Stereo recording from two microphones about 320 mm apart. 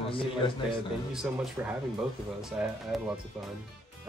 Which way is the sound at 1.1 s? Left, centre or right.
Centre.